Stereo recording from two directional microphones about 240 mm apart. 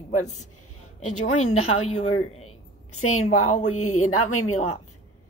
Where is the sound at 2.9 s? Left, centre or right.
Left.